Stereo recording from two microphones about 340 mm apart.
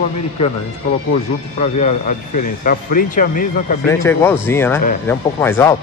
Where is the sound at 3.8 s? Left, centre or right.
Centre.